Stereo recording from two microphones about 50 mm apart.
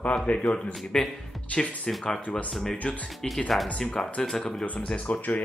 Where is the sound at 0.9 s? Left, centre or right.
Centre.